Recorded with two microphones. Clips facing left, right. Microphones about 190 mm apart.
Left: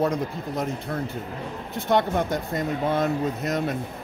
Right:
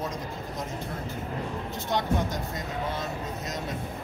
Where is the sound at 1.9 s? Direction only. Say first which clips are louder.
Left 6 dB; 55° left (ahead or behind).